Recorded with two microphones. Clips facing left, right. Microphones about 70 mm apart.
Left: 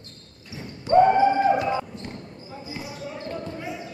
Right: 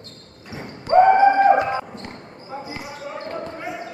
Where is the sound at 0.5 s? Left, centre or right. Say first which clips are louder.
Right 2 dB; right.